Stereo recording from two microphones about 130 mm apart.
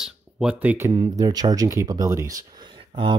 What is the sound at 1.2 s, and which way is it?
Speech, 30° right (ahead or behind).